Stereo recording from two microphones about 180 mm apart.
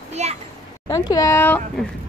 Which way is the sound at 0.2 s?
40° right (ahead or behind).